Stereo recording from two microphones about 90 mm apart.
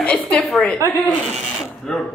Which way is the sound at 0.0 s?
15° left (ahead or behind).